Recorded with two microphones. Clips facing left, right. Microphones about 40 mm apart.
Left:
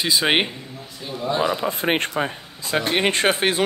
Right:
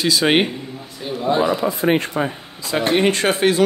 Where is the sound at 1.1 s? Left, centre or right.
Centre.